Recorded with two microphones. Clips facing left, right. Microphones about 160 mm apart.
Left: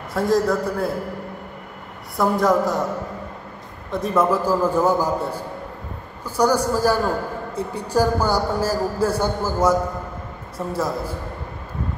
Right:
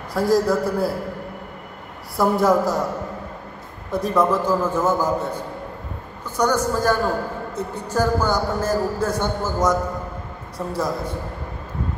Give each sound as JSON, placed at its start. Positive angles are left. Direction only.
{"t": 0.1, "sound": "a man's voice", "side_deg": 0}
{"t": 2.1, "sound": "a man's voice", "side_deg": 0}
{"t": 3.9, "sound": "a man's voice", "side_deg": 0}